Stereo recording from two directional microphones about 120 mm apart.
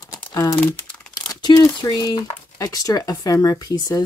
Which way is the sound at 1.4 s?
35° left (ahead or behind).